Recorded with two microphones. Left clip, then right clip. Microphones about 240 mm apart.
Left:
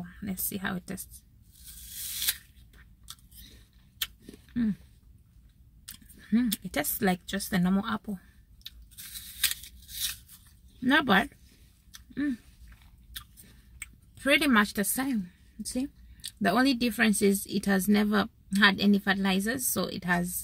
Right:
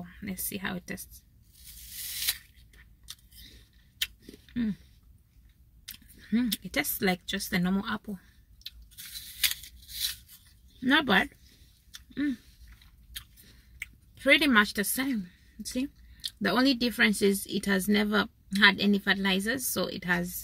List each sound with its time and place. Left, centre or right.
0.2 s a woman's voice: centre
2.2 s scissors: centre
5.9 s speech: centre
8.6 s scissors: centre
10.8 s a woman's voice: centre
11.9 s a sound: centre
13.7 s speech: centre